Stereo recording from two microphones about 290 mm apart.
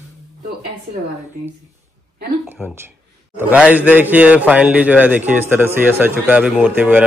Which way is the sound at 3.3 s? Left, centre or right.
Centre.